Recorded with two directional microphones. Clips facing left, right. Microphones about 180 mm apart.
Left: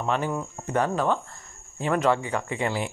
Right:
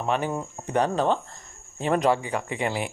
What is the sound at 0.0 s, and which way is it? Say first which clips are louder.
Speech: even; 15° right (ahead or behind).